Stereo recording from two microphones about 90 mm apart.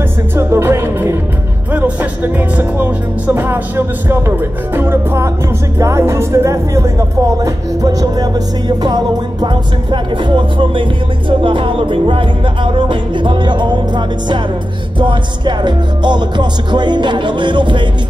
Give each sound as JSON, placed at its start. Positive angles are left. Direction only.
{"t": 0.4, "sound": "music", "side_deg": -30}